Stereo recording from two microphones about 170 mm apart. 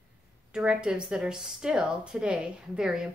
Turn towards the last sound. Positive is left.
turn(degrees=0)  # may be behind; listen again after turning